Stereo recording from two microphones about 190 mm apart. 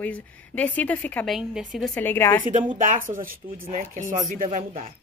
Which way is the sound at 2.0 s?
10° left (ahead or behind).